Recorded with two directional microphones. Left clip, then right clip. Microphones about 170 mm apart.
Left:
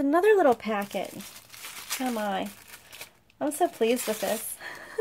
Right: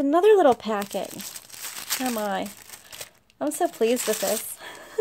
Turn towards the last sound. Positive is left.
turn(degrees=-40)  # may be behind; listen again after turning